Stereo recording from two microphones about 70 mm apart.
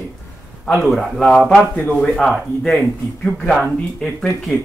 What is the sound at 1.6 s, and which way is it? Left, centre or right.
Speech, left.